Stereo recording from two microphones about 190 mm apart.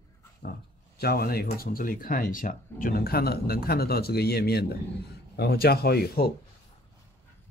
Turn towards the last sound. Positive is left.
turn(degrees=55)  # may be behind; listen again after turning